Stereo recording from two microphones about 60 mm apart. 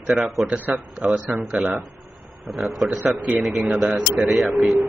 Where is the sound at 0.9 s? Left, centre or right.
Centre.